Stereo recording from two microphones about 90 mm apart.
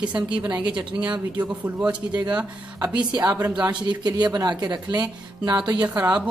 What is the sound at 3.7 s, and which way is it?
Speech, 55° right (ahead or behind).